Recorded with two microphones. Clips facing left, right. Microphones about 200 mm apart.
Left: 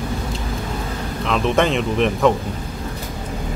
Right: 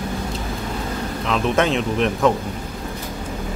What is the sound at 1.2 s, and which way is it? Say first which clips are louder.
Speech: left 2 dB; centre (ahead or behind).